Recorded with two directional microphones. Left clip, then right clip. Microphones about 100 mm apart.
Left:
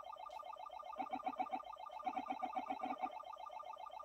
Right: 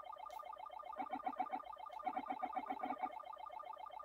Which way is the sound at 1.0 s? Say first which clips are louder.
Even; 40° right (ahead or behind).